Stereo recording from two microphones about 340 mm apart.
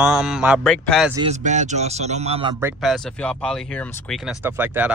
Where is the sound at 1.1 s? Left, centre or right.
Centre.